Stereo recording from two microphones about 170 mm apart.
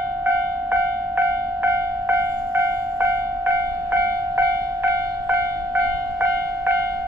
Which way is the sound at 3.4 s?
15° right (ahead or behind).